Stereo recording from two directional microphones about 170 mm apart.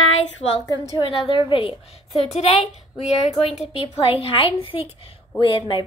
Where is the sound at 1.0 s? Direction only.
30° left (ahead or behind).